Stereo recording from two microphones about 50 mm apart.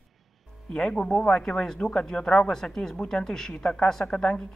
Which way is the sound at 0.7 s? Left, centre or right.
Left.